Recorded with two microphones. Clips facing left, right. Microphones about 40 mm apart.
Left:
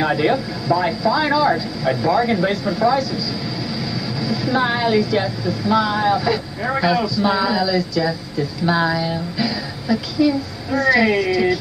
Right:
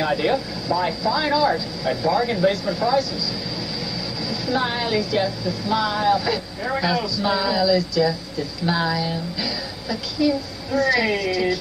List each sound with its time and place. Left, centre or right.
0.0 s speech: centre
4.2 s speech: centre